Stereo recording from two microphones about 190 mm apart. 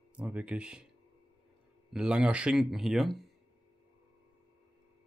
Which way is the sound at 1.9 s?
5° right (ahead or behind).